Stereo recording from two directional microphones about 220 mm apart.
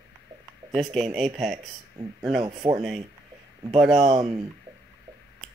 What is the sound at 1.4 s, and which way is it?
Speech, centre (ahead or behind).